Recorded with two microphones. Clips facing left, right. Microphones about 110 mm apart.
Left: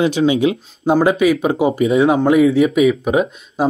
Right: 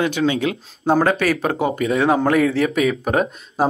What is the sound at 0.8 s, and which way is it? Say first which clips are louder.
Speech: left 3 dB; 10° left (ahead or behind).